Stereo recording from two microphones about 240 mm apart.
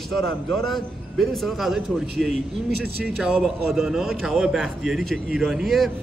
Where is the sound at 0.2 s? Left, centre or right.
Centre.